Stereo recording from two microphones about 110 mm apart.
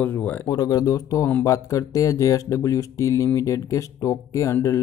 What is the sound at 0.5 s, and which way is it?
Speech, 35° left (ahead or behind).